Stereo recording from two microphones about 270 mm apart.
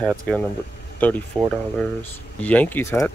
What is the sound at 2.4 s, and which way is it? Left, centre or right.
Speech, centre.